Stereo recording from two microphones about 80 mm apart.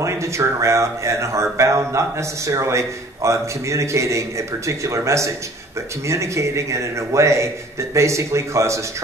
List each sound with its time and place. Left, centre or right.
0.0 s speech: right